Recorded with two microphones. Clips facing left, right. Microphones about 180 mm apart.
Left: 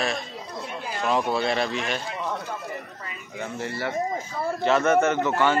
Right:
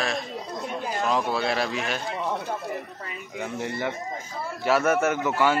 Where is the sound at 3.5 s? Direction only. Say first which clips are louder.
Right 1 dB; 15° right (ahead or behind).